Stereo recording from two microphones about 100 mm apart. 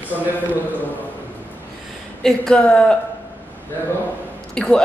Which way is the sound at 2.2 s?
10° left (ahead or behind).